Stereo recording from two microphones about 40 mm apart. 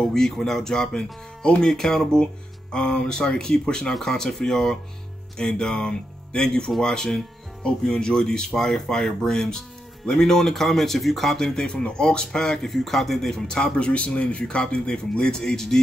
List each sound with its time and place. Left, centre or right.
0.0 s speech: centre
12.6 s speech: centre
13.7 s speech: left; by 15.8 s centre